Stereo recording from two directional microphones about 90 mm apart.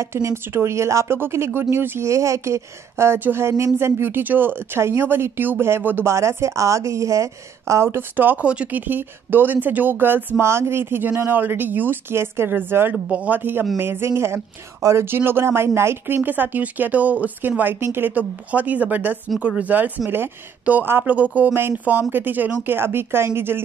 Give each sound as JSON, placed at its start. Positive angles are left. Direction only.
{"t": 0.0, "sound": "speech", "side_deg": -30}